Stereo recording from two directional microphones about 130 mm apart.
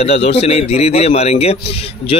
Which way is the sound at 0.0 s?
55° left (ahead or behind).